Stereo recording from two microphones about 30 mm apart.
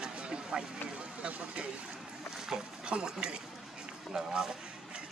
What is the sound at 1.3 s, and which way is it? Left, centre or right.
Speech, right.